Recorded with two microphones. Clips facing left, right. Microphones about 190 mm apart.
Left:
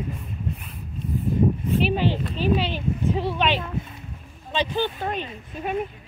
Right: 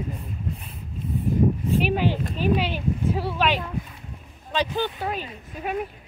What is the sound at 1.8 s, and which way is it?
Speech, 10° right (ahead or behind).